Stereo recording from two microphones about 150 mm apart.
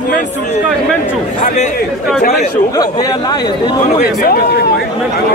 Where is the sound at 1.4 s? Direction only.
50° left (ahead or behind).